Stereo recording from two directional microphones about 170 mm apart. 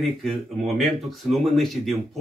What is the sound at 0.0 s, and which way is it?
Speech, centre (ahead or behind).